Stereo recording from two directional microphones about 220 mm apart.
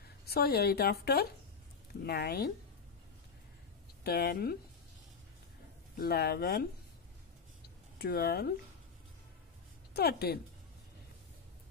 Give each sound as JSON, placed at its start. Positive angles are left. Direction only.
{"t": 0.2, "sound": "speech", "side_deg": 45}
{"t": 4.0, "sound": "speech", "side_deg": 45}
{"t": 5.9, "sound": "speech", "side_deg": 45}
{"t": 8.0, "sound": "speech", "side_deg": 45}
{"t": 9.9, "sound": "speech", "side_deg": 45}